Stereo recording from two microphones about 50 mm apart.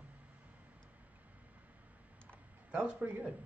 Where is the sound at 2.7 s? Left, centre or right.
Right.